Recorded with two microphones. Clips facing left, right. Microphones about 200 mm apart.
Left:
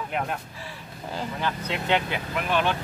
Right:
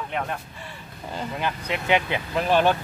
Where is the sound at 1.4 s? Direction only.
10° right (ahead or behind).